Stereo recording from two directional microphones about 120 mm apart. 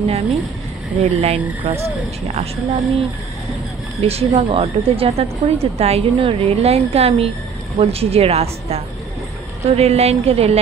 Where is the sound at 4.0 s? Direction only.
55° right (ahead or behind).